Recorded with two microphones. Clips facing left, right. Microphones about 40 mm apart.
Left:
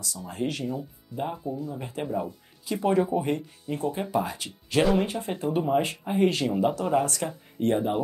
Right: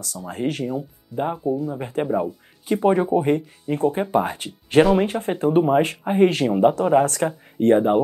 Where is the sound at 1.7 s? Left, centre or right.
Right.